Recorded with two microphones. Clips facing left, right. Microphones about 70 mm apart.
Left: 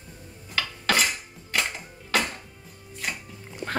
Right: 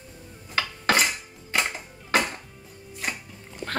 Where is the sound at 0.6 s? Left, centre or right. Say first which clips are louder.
Right 2 dB; right.